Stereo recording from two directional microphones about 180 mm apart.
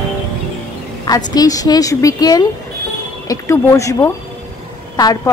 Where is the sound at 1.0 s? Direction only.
20° left (ahead or behind).